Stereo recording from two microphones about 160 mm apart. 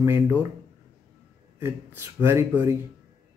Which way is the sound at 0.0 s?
15° right (ahead or behind).